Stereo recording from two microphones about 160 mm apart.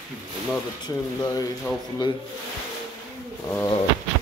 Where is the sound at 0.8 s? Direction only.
25° left (ahead or behind).